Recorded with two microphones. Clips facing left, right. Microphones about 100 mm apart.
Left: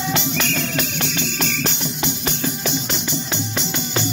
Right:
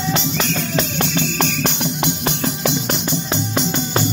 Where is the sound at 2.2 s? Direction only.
60° right (ahead or behind).